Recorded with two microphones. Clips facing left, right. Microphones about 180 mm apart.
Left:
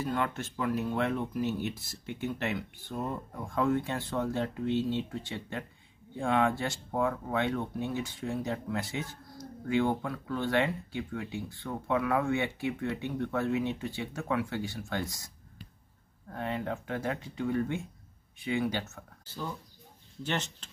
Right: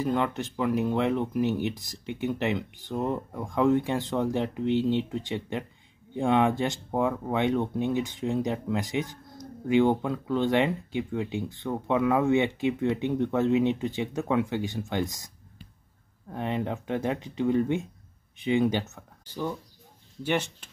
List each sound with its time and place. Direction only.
0.0 s speech: 20° right (ahead or behind)